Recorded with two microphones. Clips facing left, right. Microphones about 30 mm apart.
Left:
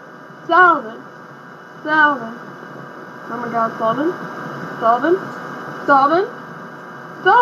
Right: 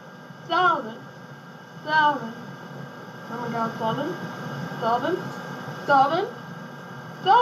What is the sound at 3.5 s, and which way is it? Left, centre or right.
Speech, left.